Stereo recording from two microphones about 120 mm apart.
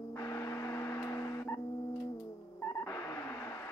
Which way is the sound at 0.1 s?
25° left (ahead or behind).